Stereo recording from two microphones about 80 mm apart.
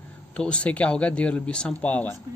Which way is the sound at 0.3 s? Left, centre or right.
Centre.